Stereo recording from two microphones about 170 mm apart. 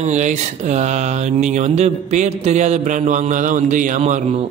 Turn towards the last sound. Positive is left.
turn(degrees=-45)  # may be behind; listen again after turning